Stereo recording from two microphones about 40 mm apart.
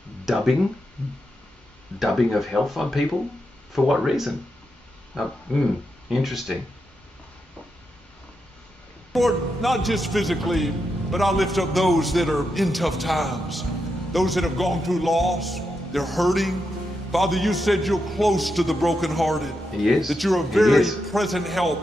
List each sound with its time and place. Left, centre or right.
0.2 s speech: centre
2.0 s a man's voice: centre
5.1 s a sound: centre
6.0 s a man's voice: centre
9.1 s a man's voice: centre